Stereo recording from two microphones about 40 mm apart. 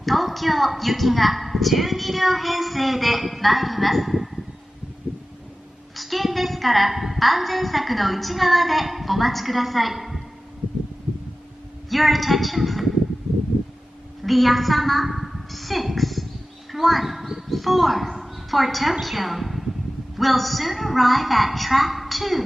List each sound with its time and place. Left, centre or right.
0.0 s a woman's voice: centre
5.9 s a woman's voice: centre
11.9 s a woman's voice: centre
14.2 s a woman's voice: centre